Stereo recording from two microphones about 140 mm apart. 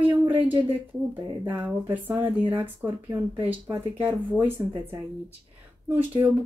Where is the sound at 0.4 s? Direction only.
35° right (ahead or behind).